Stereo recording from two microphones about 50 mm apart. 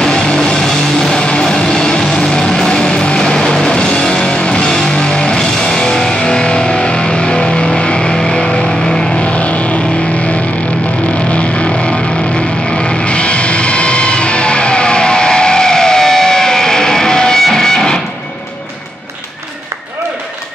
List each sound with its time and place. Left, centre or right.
0.0 s music: centre
9.2 s vehicle: left
11.2 s music: left